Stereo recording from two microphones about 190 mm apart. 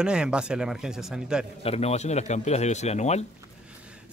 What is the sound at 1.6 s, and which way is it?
Speech, 30° left (ahead or behind).